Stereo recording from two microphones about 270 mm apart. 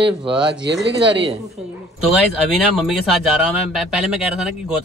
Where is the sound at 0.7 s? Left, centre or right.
Right.